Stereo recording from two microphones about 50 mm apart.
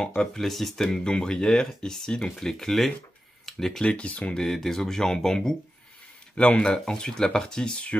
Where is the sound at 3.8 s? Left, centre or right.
Left.